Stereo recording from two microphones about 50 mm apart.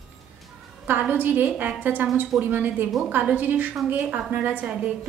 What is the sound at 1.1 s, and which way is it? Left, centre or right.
A woman's voice, right.